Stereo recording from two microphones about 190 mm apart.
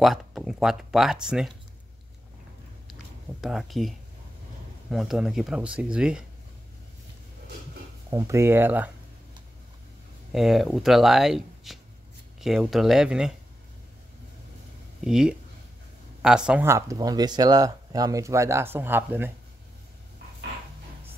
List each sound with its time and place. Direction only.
0.0 s speech: centre (ahead or behind)
2.9 s a sound: centre (ahead or behind)
4.9 s speech: centre (ahead or behind)
8.1 s speech: 15° right (ahead or behind)
10.3 s speech: centre (ahead or behind)
15.0 s speech: 5° right (ahead or behind)